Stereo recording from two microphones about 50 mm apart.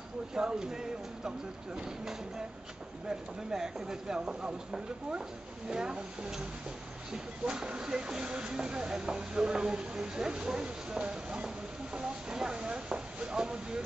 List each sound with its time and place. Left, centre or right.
0.3 s speech: centre
3.1 s speech: centre
7.4 s speech: centre